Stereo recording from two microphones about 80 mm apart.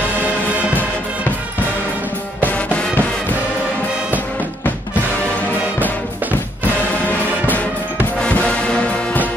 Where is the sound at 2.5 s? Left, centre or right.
Centre.